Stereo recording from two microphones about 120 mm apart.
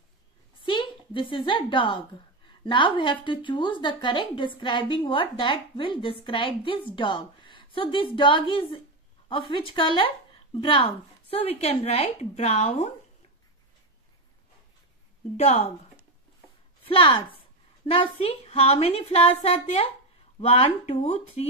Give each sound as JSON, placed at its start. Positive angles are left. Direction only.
{"t": 0.7, "sound": "a sound", "side_deg": 40}
{"t": 1.3, "sound": "a woman's voice", "side_deg": 40}
{"t": 15.3, "sound": "a woman's voice", "side_deg": 60}
{"t": 17.8, "sound": "a woman's voice", "side_deg": 45}
{"t": 18.4, "sound": "a woman's voice", "side_deg": 60}